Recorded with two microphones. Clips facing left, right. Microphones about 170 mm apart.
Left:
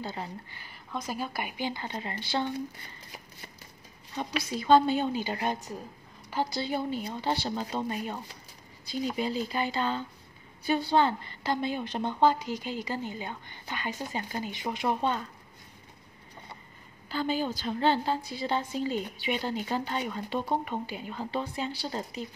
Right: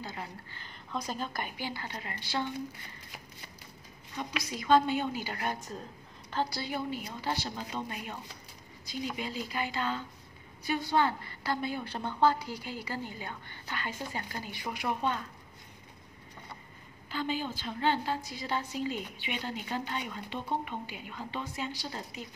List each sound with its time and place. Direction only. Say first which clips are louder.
0.0 s a woman's voice: left 4 dB; 30° left (ahead or behind)
0.9 s a woman's voice: left 2 dB; 5° left (ahead or behind); by 2.4 s 25° left (ahead or behind)
4.1 s a woman's voice: left 4 dB; 30° left (ahead or behind); by 6.6 s 15° left (ahead or behind)
6.6 s a woman's voice: left 4 dB; 30° left (ahead or behind)
17.1 s a woman's voice: left 4 dB; 40° left (ahead or behind)